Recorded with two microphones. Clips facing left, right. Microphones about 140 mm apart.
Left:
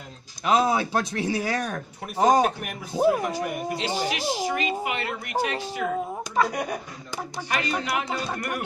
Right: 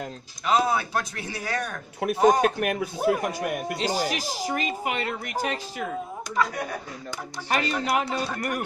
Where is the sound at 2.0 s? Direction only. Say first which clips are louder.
Right 1 dB; 70° right (ahead or behind).